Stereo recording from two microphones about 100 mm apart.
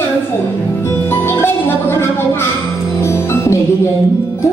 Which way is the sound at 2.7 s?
25° left (ahead or behind).